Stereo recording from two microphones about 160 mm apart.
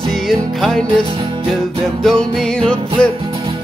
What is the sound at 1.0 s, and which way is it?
Music, 35° right (ahead or behind).